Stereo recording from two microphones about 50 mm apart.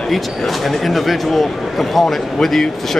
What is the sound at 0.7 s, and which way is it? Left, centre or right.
Speech, centre.